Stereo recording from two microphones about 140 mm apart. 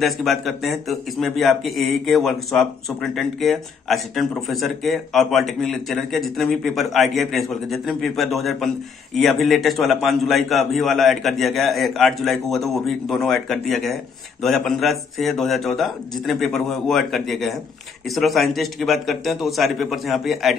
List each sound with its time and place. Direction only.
0.0 s a man's voice: centre (ahead or behind)